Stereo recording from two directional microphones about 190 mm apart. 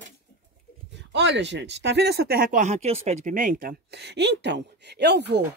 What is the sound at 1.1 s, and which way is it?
Speech, 65° right (ahead or behind).